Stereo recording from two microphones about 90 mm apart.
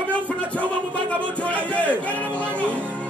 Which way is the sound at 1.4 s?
15° left (ahead or behind).